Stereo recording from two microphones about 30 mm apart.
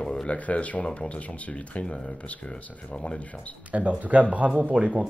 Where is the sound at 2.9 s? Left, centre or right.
Left.